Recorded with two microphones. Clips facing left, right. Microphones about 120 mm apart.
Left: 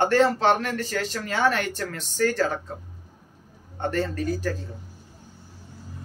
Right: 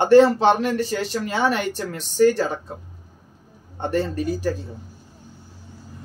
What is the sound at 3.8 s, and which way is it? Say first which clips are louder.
Speech: right 3 dB; 15° right (ahead or behind).